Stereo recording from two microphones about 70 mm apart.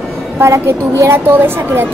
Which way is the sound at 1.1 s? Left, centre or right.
Right.